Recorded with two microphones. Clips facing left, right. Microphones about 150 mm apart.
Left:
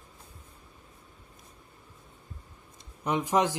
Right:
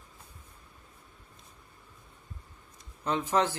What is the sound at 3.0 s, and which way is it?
Speech, 15° left (ahead or behind).